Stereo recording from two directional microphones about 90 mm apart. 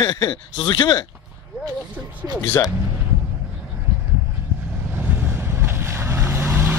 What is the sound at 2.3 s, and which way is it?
Speech, 25° left (ahead or behind).